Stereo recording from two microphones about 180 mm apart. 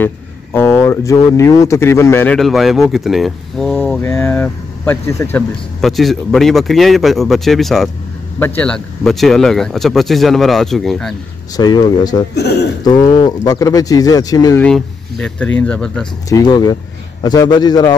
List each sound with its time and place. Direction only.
0.0 s speech: 15° left (ahead or behind)
4.0 s speech: 10° left (ahead or behind)
5.8 s speech: centre (ahead or behind)
11.5 s speech: 20° left (ahead or behind)
12.4 s a man's voice: 65° left (ahead or behind)
12.8 s speech: 25° left (ahead or behind)
14.6 s speech: 5° left (ahead or behind)
16.3 s speech: 20° left (ahead or behind)